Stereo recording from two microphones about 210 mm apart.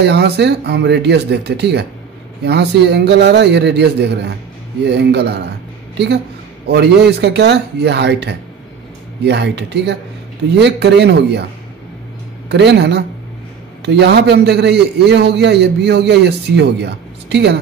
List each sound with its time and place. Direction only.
0.0 s a man's voice: 55° right (ahead or behind)
12.4 s a man's voice: 55° right (ahead or behind)